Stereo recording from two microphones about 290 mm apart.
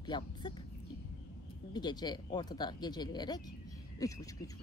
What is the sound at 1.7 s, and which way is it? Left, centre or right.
Speech, centre.